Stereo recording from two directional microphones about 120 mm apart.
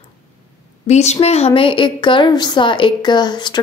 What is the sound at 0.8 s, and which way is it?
A woman's voice, 65° left (ahead or behind).